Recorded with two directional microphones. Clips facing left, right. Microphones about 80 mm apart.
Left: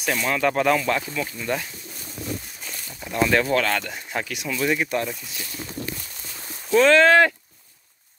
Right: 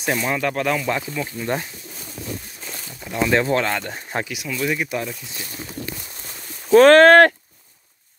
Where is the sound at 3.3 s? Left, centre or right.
Right.